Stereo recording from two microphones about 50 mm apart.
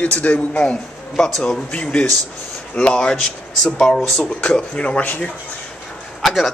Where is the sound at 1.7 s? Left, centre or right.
Left.